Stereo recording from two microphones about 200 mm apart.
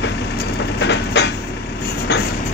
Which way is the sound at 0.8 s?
60° left (ahead or behind).